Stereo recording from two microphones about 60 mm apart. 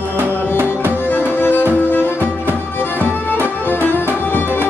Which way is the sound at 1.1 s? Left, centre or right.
Left.